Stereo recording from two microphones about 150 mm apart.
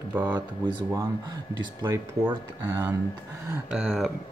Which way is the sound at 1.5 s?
30° right (ahead or behind).